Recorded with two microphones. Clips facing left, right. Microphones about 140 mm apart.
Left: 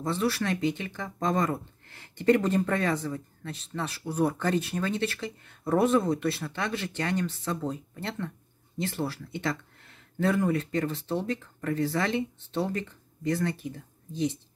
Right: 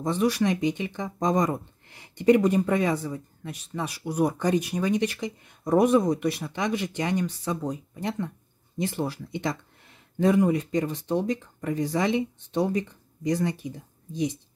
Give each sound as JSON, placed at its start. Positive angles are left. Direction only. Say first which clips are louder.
{"t": 0.0, "sound": "speech", "louder": "right 4 dB", "side_deg": -15}